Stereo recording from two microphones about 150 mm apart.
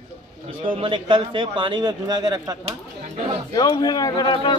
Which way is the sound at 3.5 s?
30° left (ahead or behind).